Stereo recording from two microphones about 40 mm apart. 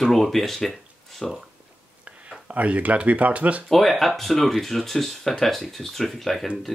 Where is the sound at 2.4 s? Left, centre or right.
Right.